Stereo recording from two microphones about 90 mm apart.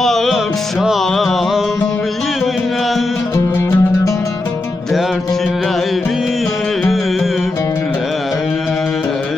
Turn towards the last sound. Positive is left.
turn(degrees=0)  # may be behind; listen again after turning